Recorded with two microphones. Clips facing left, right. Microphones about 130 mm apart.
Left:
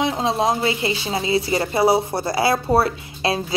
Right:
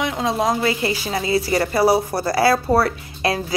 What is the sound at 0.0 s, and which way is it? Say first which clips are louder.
A woman's voice: left 1 dB; 30° left (ahead or behind).